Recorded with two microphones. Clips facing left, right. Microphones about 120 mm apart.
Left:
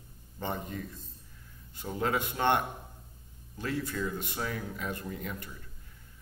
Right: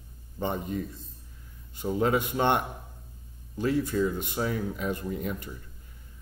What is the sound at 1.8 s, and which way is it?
Speech, 20° right (ahead or behind).